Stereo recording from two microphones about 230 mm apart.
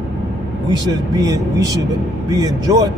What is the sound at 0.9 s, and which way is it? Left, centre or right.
Speech, centre.